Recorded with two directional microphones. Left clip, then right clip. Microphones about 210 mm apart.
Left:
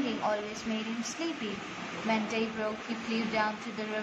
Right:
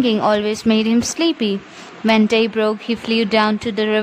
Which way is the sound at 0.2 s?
50° right (ahead or behind).